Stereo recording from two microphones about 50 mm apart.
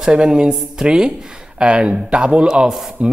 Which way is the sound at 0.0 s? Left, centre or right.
Centre.